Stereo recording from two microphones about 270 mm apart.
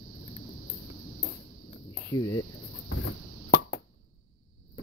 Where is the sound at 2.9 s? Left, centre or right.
Left.